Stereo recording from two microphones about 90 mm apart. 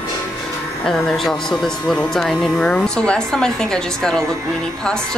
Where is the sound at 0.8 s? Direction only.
5° left (ahead or behind).